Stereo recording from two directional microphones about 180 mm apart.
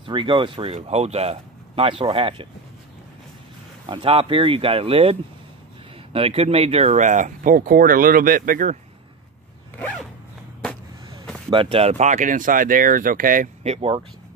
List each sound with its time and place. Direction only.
0.0 s speech: 30° right (ahead or behind)
3.8 s speech: 30° right (ahead or behind)
6.1 s speech: 35° right (ahead or behind); by 8.7 s 50° right (ahead or behind)
9.8 s zipper: 5° left (ahead or behind)
11.5 s speech: 30° right (ahead or behind); by 13.5 s 50° right (ahead or behind)
13.7 s speech: 30° right (ahead or behind)